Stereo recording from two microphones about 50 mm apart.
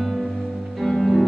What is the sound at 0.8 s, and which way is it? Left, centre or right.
Music, centre.